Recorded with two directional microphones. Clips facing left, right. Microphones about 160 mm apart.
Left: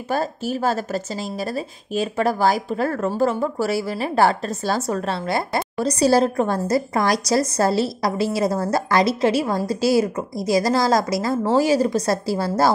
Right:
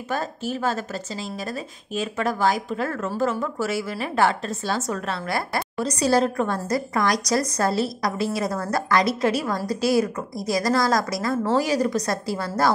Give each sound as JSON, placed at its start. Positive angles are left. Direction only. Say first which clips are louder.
{"t": 0.1, "sound": "a woman's voice", "louder": "left 4 dB", "side_deg": 35}